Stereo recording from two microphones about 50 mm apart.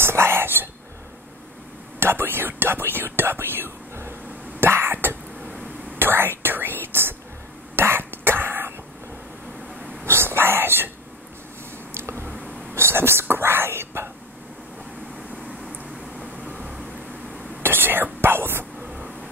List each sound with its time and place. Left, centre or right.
0.0 s whispering: right
2.0 s speech: right
4.6 s cough: right
5.9 s whispering: right
7.7 s cough: right
10.0 s whispering: right
12.0 s a sound: right
12.7 s whispering: right
17.6 s whispering: right
18.8 s vehicle: centre